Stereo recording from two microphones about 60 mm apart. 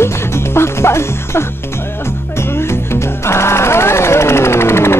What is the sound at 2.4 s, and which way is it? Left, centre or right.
Music, left.